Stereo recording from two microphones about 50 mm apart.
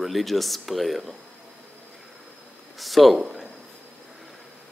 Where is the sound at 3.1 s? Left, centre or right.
Centre.